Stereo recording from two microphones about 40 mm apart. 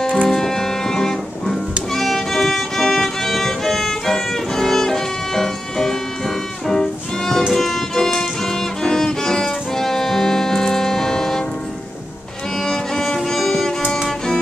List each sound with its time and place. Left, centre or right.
0.0 s music: centre
12.6 s music: centre